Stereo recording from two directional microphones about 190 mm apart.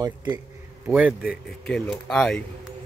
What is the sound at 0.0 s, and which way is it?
Speech, 20° right (ahead or behind).